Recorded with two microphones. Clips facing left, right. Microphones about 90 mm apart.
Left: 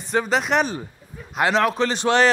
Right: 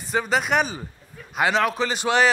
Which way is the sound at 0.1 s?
Centre (ahead or behind).